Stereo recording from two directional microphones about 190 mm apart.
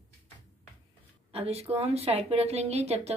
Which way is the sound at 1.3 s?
30° right (ahead or behind).